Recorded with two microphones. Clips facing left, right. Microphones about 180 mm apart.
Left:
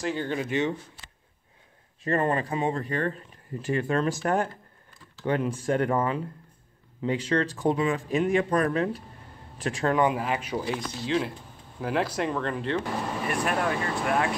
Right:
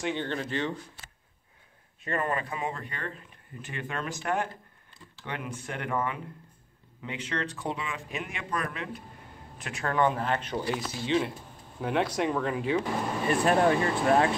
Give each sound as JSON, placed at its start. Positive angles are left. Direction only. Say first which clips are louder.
{"t": 0.0, "sound": "speech", "louder": "left 2 dB", "side_deg": 5}
{"t": 2.0, "sound": "speech", "louder": "left 5 dB", "side_deg": 35}
{"t": 9.9, "sound": "speech", "louder": "right 3 dB", "side_deg": 10}
{"t": 13.3, "sound": "speech", "louder": "right 5 dB", "side_deg": -30}